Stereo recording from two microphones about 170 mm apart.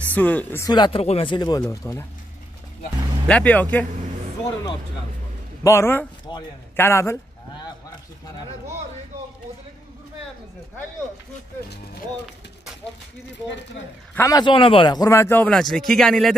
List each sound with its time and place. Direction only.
0.1 s a man's voice: 10° left (ahead or behind)
0.7 s a man's voice: 25° left (ahead or behind)
3.3 s a man's voice: 10° left (ahead or behind)
5.6 s a man's voice: 15° left (ahead or behind)
14.1 s a man's voice: 20° left (ahead or behind); by 16.3 s centre (ahead or behind)